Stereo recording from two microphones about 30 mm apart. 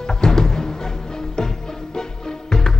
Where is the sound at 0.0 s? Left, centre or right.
Left.